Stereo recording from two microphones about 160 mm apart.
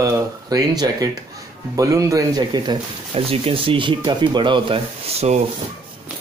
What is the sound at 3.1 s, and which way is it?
Speech, 35° right (ahead or behind).